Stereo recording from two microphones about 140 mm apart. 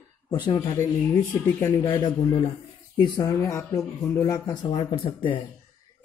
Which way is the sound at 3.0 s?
25° left (ahead or behind).